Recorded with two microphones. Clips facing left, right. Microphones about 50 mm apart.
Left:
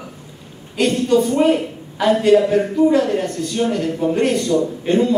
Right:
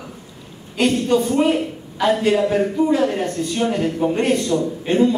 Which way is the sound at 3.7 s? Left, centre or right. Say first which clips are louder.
Even; centre.